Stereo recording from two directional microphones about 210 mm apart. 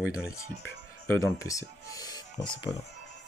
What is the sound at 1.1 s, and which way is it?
Music, 10° left (ahead or behind).